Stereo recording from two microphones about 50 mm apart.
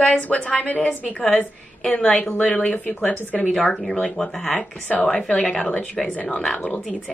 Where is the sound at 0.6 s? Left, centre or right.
Left.